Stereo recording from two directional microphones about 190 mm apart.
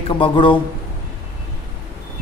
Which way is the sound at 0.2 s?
25° left (ahead or behind).